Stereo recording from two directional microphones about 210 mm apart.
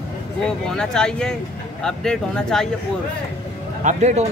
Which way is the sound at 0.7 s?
5° left (ahead or behind).